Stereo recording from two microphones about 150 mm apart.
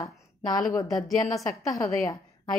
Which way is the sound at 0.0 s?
25° left (ahead or behind).